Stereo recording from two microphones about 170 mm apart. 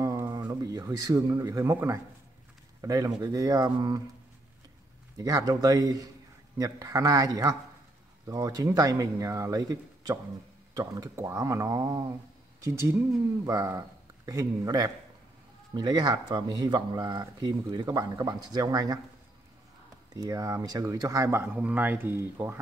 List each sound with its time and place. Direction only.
0.0 s speech: 20° right (ahead or behind)
5.1 s speech: 20° right (ahead or behind)
20.2 s speech: 20° right (ahead or behind)